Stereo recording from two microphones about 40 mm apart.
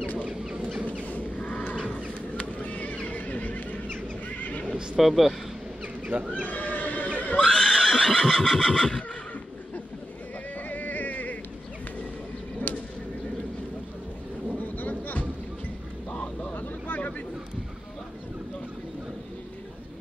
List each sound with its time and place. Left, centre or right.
0.3 s a sound: centre
1.0 s a sound: left
2.6 s horse: left
4.3 s neigh: left
4.9 s a man's voice: centre
6.0 s speech: right
6.5 s neigh: left
7.4 s neigh: centre
8.5 s neigh: centre
10.7 s a sound: left
12.7 s bird: left
14.6 s a sound: left
16.5 s vehicle: left